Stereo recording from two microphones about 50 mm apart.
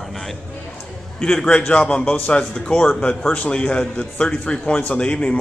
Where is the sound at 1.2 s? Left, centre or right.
Centre.